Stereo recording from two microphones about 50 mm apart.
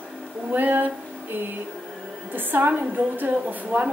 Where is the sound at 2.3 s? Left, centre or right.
Right.